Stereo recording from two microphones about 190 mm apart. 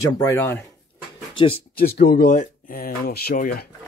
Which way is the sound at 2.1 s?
45° left (ahead or behind).